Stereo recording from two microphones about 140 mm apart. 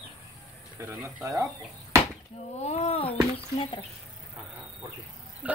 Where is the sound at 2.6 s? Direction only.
50° left (ahead or behind).